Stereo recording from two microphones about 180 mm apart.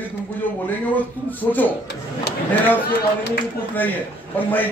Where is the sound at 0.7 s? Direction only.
10° left (ahead or behind).